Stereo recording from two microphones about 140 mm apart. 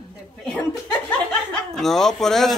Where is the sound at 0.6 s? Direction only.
15° left (ahead or behind).